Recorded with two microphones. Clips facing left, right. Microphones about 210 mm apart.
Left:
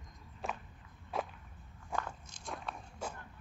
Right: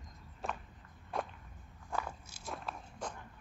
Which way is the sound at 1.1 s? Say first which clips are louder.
Left 1 dB; 5° left (ahead or behind).